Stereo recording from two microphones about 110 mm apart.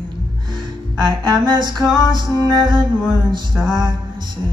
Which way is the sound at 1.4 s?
40° right (ahead or behind).